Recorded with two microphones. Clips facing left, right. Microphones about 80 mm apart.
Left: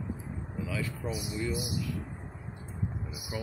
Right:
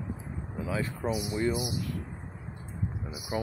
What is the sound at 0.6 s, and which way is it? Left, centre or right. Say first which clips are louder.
Speech: right 5 dB; right.